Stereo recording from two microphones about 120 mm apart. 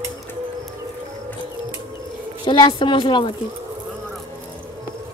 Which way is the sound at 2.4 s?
40° left (ahead or behind).